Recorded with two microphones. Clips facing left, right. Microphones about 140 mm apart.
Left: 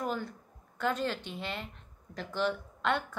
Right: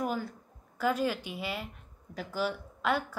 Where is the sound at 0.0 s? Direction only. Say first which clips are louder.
Right 2 dB; 5° right (ahead or behind).